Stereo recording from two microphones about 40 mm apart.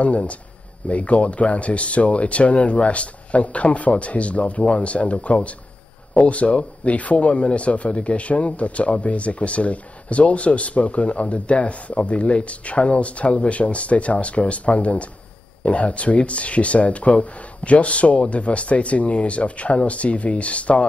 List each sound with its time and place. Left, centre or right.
0.0 s a man's voice: left